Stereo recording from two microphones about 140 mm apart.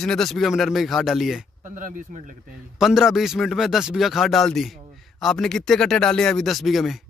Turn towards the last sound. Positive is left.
turn(degrees=0)  # may be behind; listen again after turning